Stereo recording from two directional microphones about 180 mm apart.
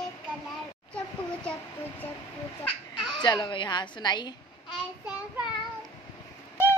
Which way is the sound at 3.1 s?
20° left (ahead or behind).